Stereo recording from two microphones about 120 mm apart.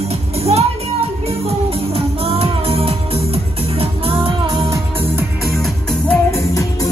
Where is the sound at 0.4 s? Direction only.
60° right (ahead or behind).